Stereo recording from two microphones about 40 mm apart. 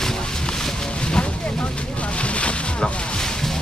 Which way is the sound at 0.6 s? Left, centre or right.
Left.